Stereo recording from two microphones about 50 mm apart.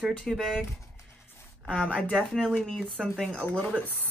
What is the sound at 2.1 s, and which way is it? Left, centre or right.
Speech, centre.